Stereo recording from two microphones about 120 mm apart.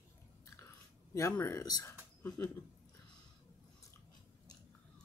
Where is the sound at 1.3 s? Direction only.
20° left (ahead or behind).